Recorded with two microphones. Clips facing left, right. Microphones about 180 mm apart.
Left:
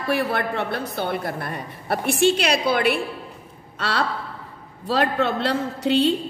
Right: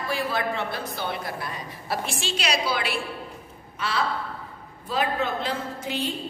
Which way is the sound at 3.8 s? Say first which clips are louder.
Left 2 dB; 70° left (ahead or behind).